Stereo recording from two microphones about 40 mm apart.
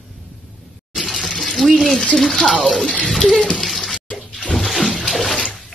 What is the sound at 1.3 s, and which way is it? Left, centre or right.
Water, centre.